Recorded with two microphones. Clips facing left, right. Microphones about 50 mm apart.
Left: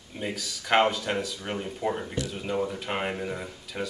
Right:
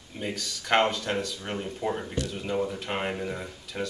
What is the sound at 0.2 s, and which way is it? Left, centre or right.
Speech, centre.